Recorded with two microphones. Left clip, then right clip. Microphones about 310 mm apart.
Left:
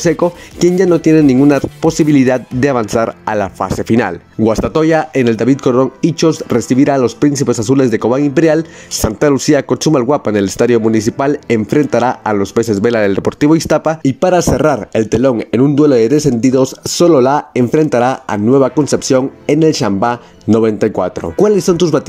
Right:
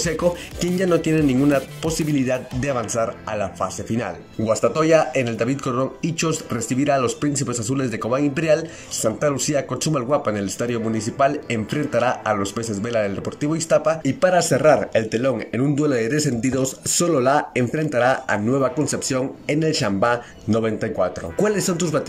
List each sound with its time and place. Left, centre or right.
0.0 s speech: left